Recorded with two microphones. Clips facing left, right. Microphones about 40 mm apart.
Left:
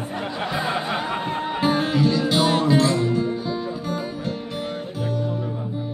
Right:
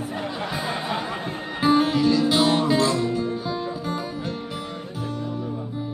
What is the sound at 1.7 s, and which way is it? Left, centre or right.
Music, centre.